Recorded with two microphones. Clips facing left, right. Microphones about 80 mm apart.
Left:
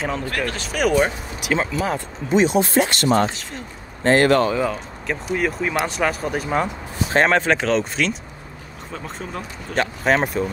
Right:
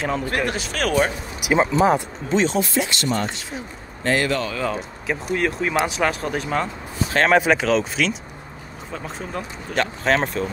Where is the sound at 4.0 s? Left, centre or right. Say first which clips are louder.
Left 5 dB; left.